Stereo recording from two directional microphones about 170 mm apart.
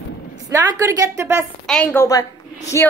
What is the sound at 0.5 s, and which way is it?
Speech, 15° right (ahead or behind).